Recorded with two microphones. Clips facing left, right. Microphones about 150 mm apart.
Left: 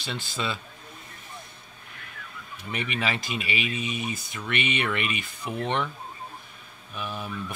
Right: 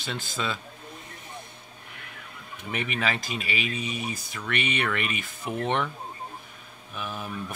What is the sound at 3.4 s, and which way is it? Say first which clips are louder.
Speech: left 1 dB; 45° right (ahead or behind).